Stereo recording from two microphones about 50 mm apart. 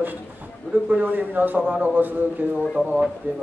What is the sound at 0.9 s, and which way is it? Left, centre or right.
A man's voice, right.